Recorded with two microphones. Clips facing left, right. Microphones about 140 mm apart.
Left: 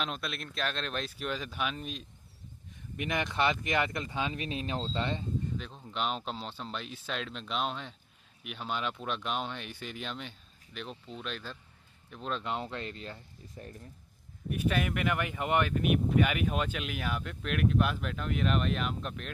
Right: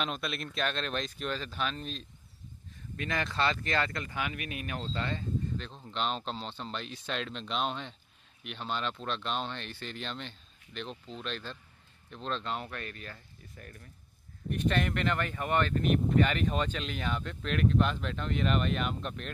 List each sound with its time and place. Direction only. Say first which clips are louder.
0.0 s speech: right 2 dB; centre (ahead or behind); by 5.2 s 25° left (ahead or behind)
5.6 s speech: even; 5° left (ahead or behind)
12.5 s speech: left 2 dB; 20° left (ahead or behind)
14.5 s speech: right 1 dB; 10° left (ahead or behind)